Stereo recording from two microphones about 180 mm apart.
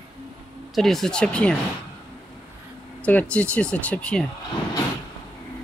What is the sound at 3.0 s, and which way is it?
Speech, 5° left (ahead or behind).